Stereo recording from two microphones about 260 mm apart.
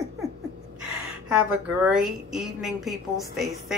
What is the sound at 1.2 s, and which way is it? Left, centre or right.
A woman's voice, centre.